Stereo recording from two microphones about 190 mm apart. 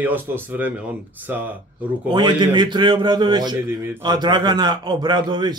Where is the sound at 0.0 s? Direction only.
10° right (ahead or behind).